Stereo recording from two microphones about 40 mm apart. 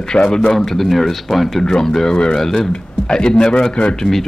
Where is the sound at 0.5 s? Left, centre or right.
Centre; by 4.0 s left.